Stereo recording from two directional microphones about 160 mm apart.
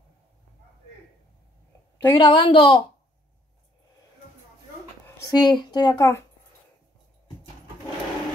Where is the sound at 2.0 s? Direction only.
25° left (ahead or behind).